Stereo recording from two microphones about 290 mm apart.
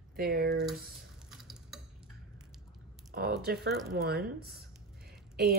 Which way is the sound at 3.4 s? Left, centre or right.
Right.